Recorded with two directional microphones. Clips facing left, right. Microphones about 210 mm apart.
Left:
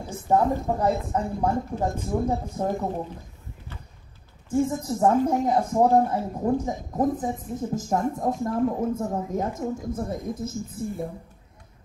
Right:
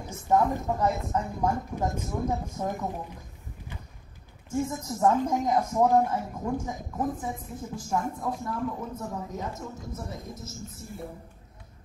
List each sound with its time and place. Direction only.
0.3 s speech: 30° left (ahead or behind)
4.6 s speech: 30° left (ahead or behind); by 10.9 s 55° left (ahead or behind)